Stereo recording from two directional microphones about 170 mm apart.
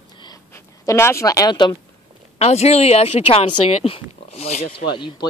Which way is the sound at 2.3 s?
40° left (ahead or behind).